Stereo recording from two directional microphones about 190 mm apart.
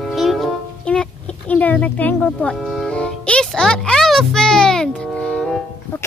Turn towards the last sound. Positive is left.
turn(degrees=5)  # may be behind; listen again after turning